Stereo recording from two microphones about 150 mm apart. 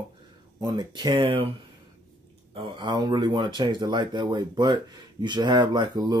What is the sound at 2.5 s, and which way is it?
Speech, 30° right (ahead or behind).